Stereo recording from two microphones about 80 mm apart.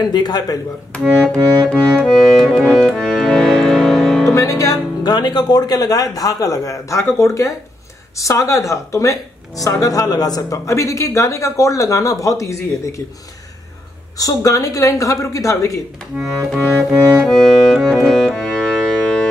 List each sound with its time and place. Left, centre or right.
0.0 s speech: left
1.2 s music: centre
4.3 s speech: left
14.1 s speech: left
16.1 s music: centre
17.3 s music: centre